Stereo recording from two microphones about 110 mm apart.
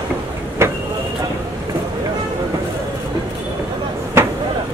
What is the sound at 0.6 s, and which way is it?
Vehicle, 25° right (ahead or behind).